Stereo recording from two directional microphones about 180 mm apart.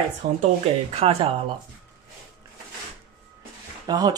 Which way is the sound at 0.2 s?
35° right (ahead or behind).